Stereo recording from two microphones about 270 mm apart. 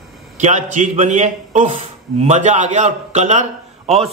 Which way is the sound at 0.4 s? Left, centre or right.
Right.